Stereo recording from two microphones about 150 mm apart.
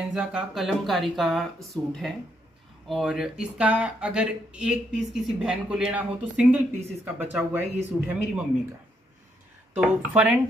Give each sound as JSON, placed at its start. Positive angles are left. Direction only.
{"t": 0.1, "sound": "speech", "side_deg": -5}
{"t": 9.8, "sound": "speech", "side_deg": -10}